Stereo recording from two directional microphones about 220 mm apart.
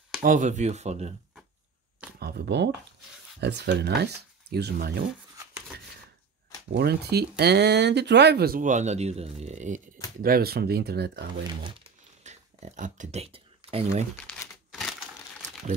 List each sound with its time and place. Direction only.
0.2 s speech: 35° right (ahead or behind)
2.1 s speech: 45° right (ahead or behind)
6.7 s speech: 45° right (ahead or behind); by 9.8 s 30° right (ahead or behind)
10.2 s speech: 45° right (ahead or behind)
12.2 s a sound: 30° right (ahead or behind)
14.7 s crushing: centre (ahead or behind)